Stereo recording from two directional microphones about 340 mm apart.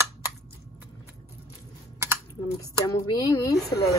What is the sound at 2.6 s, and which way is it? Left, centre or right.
Speech, centre.